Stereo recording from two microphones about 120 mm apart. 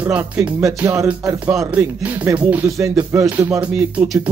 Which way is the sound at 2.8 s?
25° right (ahead or behind).